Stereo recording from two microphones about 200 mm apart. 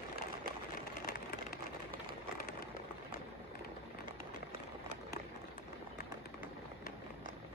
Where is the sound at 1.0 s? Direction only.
45° left (ahead or behind).